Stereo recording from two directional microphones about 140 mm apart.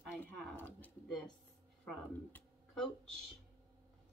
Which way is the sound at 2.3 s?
5° left (ahead or behind).